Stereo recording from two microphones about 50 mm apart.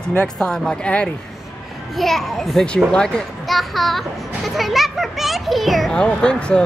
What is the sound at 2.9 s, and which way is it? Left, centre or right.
Speech, centre.